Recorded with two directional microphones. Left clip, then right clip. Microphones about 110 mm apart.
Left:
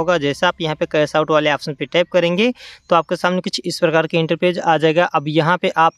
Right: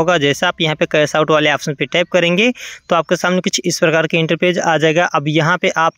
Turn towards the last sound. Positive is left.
turn(degrees=-30)  # may be behind; listen again after turning